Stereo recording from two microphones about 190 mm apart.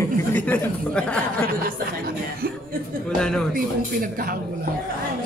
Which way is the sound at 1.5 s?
50° right (ahead or behind).